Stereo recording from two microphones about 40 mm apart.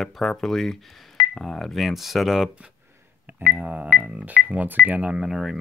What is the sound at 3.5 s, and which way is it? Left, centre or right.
Music, right.